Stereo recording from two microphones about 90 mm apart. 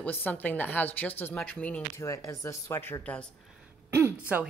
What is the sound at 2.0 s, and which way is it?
Speech, 35° left (ahead or behind).